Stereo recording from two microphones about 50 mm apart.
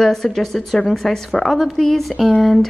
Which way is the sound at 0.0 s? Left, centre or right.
Centre.